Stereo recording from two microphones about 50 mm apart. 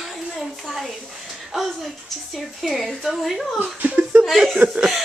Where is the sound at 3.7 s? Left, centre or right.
Right.